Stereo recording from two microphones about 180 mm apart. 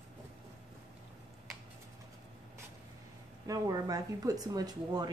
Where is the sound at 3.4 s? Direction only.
20° right (ahead or behind).